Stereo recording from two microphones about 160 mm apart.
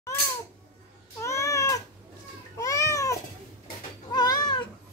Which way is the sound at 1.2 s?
20° left (ahead or behind).